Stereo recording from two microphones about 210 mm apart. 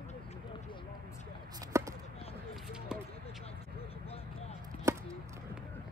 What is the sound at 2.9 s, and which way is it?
Basketball bounce, 5° right (ahead or behind).